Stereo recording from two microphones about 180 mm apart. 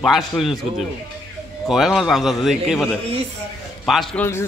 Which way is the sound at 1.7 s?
Centre (ahead or behind).